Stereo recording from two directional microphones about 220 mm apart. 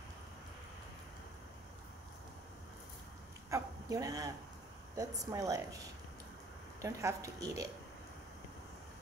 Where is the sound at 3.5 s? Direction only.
15° right (ahead or behind).